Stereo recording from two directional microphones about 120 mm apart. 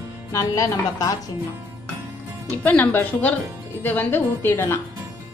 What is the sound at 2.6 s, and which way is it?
A woman's voice, 15° left (ahead or behind).